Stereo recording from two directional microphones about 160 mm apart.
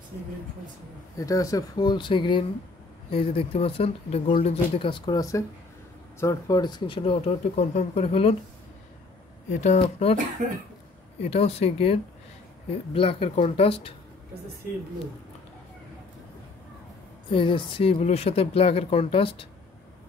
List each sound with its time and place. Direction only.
1.1 s speech: 20° left (ahead or behind); by 8.4 s 40° left (ahead or behind)
9.5 s speech: 45° left (ahead or behind)
11.2 s speech: 40° left (ahead or behind)
17.3 s speech: 30° left (ahead or behind)